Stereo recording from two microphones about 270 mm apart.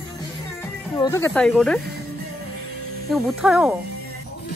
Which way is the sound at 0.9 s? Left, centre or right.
Centre.